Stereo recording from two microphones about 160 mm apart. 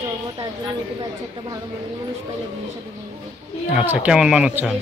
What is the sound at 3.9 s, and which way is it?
Speech, 5° right (ahead or behind).